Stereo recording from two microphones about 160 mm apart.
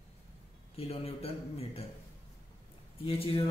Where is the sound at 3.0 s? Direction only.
35° left (ahead or behind).